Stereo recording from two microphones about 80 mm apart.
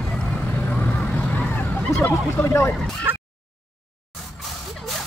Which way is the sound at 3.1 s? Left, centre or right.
Right.